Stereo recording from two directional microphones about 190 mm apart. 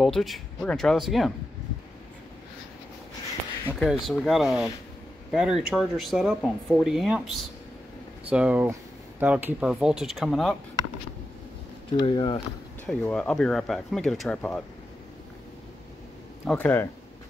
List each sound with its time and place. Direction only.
0.0 s speech: centre (ahead or behind)
3.6 s speech: 5° left (ahead or behind)
8.3 s speech: 5° right (ahead or behind)
12.0 s speech: 25° left (ahead or behind)
12.8 s speech: 10° left (ahead or behind)
16.4 s speech: 10° left (ahead or behind)